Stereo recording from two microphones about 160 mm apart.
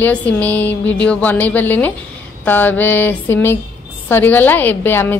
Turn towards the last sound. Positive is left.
turn(degrees=15)  # may be behind; listen again after turning